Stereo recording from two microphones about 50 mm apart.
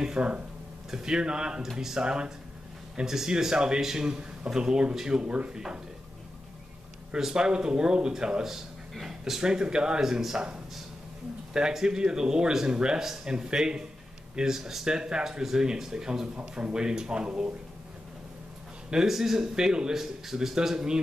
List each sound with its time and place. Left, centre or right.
0.0 s speech: centre
7.1 s speech: centre
18.9 s speech: centre